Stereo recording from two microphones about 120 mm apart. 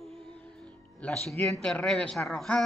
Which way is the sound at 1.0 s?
5° left (ahead or behind).